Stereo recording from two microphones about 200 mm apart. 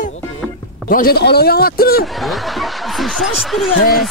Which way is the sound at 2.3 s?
Centre (ahead or behind).